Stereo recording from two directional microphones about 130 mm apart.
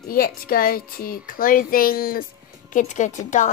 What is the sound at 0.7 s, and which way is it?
Speech, 90° left.